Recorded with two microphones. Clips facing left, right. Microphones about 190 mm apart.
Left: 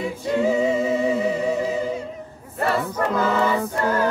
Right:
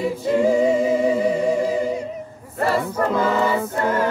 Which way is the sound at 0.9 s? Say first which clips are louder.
Right 2 dB; 10° right (ahead or behind).